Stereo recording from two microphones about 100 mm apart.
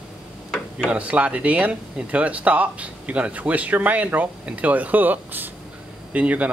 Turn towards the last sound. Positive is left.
turn(degrees=-15)  # may be behind; listen again after turning